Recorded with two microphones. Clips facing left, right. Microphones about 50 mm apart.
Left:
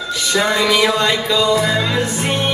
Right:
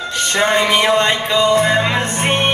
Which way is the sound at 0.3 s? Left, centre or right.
Right.